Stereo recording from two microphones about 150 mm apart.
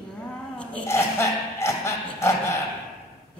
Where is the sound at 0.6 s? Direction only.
10° left (ahead or behind).